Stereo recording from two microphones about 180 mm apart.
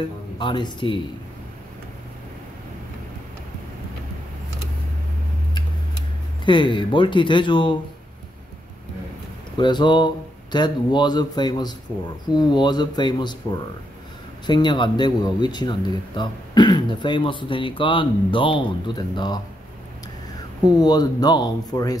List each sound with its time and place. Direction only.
0.4 s speech: 25° left (ahead or behind)
6.4 s speech: 25° left (ahead or behind)
9.6 s speech: 25° left (ahead or behind)
20.8 s speech: 20° left (ahead or behind)